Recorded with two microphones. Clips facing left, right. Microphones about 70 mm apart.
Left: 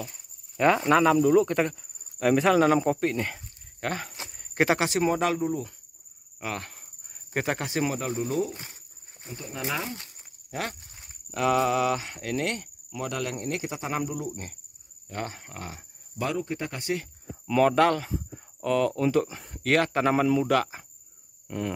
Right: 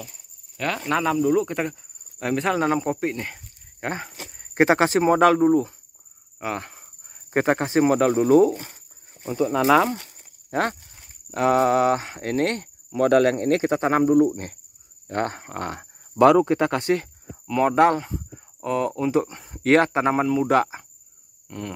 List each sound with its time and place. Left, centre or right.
0.6 s speech: left
0.8 s speech: centre
3.8 s speech: right
6.4 s speech: right
7.9 s speech: right
9.7 s speech: right
10.5 s speech: right
13.1 s speech: right
16.8 s speech: right
17.6 s speech: right
19.2 s speech: centre
19.6 s speech: right
21.5 s speech: centre